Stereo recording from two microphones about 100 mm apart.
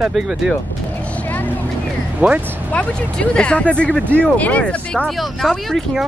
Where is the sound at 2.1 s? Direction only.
10° right (ahead or behind).